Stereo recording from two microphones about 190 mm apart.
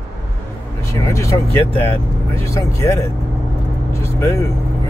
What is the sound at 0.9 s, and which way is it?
Speech, 15° left (ahead or behind).